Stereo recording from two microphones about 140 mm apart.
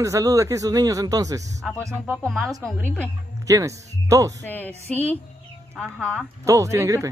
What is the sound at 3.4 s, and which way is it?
Speech, 20° right (ahead or behind).